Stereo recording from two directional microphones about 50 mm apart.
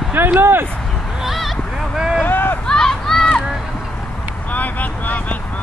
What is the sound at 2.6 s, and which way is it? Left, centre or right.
Run, centre.